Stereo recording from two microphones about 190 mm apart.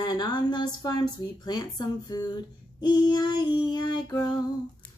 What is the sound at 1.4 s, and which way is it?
Female singing, 20° left (ahead or behind).